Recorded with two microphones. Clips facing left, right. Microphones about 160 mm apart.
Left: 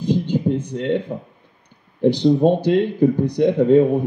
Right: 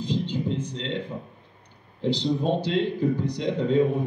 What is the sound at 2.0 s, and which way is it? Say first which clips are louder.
Speech: left 10 dB; 55° left (ahead or behind).